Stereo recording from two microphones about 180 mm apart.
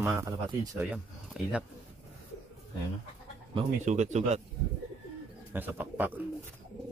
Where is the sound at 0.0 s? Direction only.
15° right (ahead or behind).